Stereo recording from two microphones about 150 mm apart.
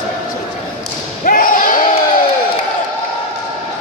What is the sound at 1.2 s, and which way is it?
Slam, 65° left (ahead or behind).